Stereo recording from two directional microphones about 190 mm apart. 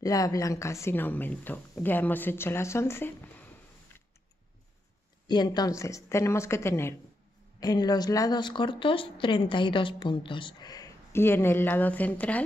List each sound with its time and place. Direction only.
0.0 s speech: 20° left (ahead or behind)
5.2 s speech: 20° left (ahead or behind)